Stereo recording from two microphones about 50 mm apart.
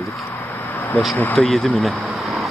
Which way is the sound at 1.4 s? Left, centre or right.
Left.